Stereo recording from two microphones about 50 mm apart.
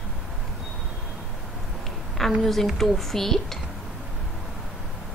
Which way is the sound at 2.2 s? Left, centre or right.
Centre.